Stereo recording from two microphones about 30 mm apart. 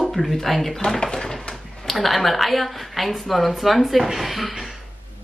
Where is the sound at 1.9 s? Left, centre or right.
Centre.